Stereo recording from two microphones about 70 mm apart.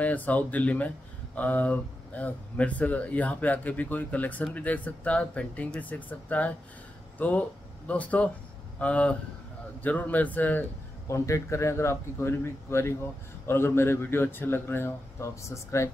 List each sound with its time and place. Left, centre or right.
0.0 s speech: left
11.1 s a man's voice: left